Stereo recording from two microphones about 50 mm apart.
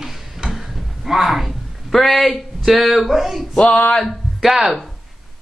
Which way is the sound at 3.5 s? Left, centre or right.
Centre.